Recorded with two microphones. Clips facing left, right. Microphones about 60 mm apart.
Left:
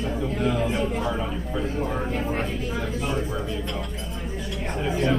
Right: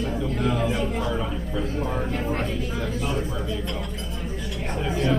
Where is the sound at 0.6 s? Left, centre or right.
Centre.